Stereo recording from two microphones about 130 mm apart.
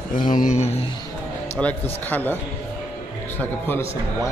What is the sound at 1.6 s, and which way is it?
Speech, 10° left (ahead or behind).